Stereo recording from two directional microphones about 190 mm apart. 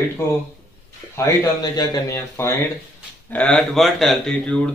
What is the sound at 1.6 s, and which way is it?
Speech, 20° left (ahead or behind).